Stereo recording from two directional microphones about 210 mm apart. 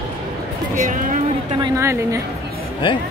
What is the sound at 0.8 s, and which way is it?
Speech, 40° right (ahead or behind).